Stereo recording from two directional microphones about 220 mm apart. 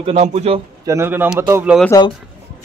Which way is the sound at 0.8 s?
10° right (ahead or behind).